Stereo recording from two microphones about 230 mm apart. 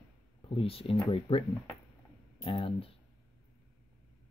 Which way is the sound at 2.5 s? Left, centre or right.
Left.